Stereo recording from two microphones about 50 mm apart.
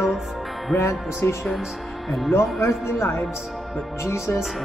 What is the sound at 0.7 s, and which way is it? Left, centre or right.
Speech, left.